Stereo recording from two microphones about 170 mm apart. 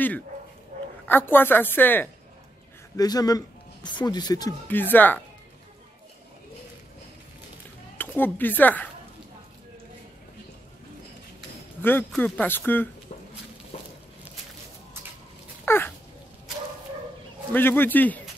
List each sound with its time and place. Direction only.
0.7 s a sound: 45° right (ahead or behind)
1.0 s a woman's voice: 10° left (ahead or behind)
3.0 s speech: 20° left (ahead or behind)
4.6 s a woman's voice: 10° left (ahead or behind)
8.0 s a woman's voice: 10° left (ahead or behind)
11.8 s a woman's voice: 10° left (ahead or behind)
15.6 s a sound: 10° left (ahead or behind)
17.5 s a woman's voice: 10° left (ahead or behind)